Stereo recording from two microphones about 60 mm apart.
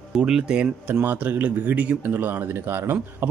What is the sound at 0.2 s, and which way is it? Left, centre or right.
Speech, centre.